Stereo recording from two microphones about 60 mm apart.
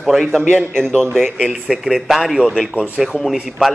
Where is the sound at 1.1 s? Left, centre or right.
Centre.